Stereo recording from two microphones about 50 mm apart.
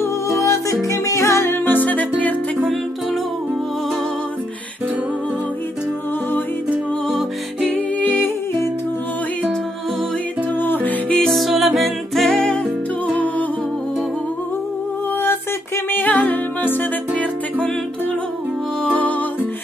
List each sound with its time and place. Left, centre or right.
0.4 s music: left
1.5 s music: left
7.1 s music: centre
7.7 s music: left
10.6 s music: left
11.1 s music: centre
12.3 s music: centre
13.1 s music: left
15.9 s music: left
18.9 s music: left